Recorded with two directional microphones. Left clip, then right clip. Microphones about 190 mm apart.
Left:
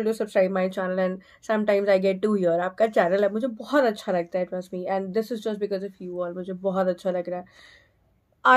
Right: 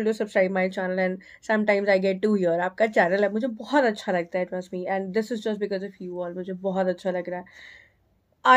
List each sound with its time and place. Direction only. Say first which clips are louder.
0.0 s a woman's voice: even; 5° left (ahead or behind)